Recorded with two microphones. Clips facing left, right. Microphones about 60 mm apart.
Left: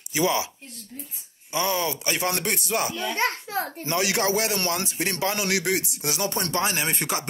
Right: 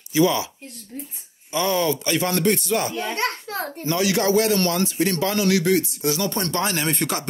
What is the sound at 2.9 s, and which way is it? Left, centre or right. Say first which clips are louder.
Speech: right 2 dB; right.